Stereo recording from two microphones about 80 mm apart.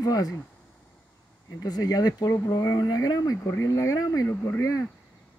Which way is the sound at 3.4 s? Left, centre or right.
Left.